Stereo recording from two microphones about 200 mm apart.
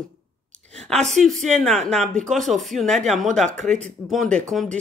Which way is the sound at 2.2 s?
Centre (ahead or behind).